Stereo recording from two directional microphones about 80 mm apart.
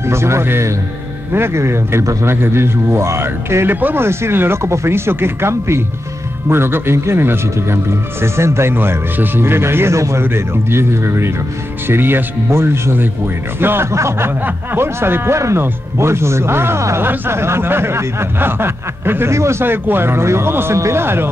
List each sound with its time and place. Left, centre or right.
0.0 s speech: right